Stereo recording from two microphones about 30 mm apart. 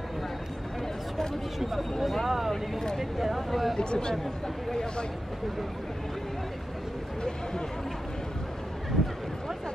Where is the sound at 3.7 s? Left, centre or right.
Left.